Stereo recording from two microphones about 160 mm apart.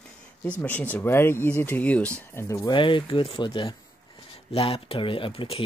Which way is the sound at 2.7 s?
30° left (ahead or behind).